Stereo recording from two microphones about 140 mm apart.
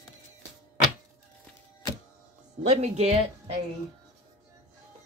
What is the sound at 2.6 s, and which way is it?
Speech, 50° right (ahead or behind).